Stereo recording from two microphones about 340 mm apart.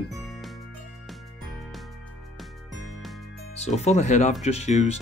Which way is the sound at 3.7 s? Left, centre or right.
Centre.